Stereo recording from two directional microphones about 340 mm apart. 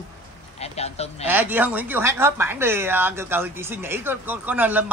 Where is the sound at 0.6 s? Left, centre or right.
Centre.